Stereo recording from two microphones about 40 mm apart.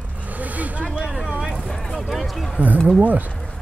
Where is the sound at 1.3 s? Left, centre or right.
Right.